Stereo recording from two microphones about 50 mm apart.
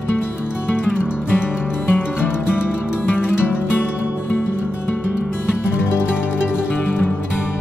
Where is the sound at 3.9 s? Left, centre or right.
Right.